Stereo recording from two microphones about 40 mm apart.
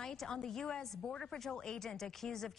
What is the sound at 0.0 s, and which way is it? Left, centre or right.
A woman's voice, centre.